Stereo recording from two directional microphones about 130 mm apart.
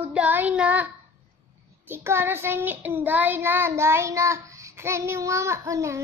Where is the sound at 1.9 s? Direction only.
20° right (ahead or behind).